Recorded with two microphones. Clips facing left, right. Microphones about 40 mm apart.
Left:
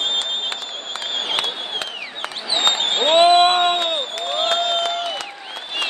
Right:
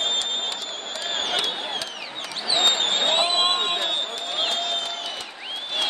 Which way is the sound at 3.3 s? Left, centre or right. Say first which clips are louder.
Left 9 dB; left.